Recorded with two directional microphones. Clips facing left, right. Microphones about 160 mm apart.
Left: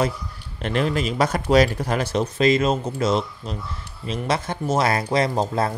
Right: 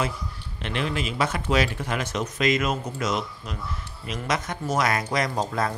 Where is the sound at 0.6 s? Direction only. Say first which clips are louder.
Left 6 dB; 40° left (ahead or behind).